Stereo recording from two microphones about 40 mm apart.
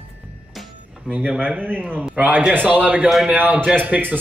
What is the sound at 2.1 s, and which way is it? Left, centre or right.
Speech, right.